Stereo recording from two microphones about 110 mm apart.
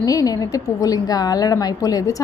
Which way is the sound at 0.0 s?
35° left (ahead or behind).